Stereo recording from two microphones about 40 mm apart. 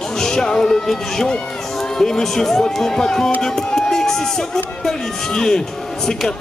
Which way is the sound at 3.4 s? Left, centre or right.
Centre.